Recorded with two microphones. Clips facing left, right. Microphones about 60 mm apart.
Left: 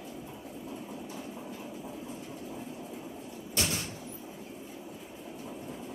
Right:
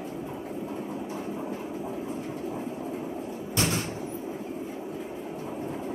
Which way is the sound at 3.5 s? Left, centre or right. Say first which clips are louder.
Right 5 dB; right.